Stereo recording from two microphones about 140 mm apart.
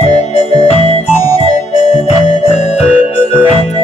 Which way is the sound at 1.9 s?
55° left (ahead or behind).